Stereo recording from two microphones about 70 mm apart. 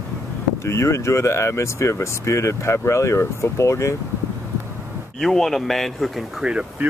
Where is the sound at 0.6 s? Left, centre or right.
Left.